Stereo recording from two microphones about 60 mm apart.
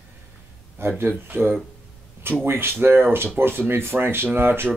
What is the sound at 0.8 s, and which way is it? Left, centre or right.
Speech, right.